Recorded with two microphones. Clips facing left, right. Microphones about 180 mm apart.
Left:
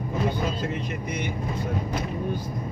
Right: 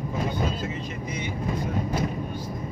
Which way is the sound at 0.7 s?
65° left (ahead or behind).